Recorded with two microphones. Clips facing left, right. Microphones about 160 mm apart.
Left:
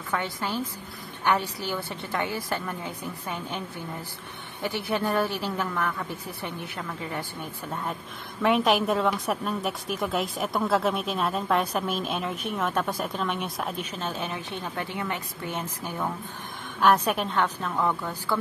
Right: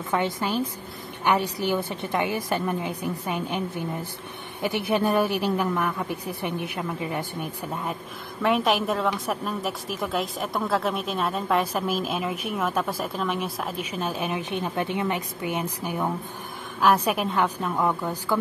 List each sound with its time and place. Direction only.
0.1 s speech: 15° right (ahead or behind)
8.4 s a woman's voice: centre (ahead or behind)